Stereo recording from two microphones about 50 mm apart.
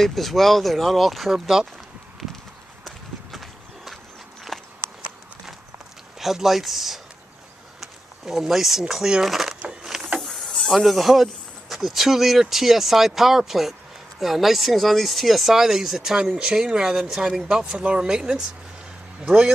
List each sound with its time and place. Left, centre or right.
0.0 s speech: centre
2.8 s walk: centre
4.5 s a sound: centre
6.1 s speech: centre
9.3 s a sound: centre
10.2 s snake: centre
11.7 s speech: centre; by 19.5 s right